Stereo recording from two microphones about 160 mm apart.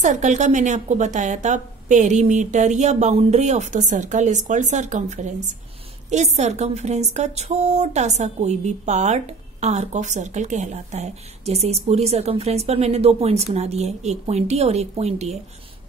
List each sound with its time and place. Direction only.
0.0 s a woman's voice: 50° right (ahead or behind)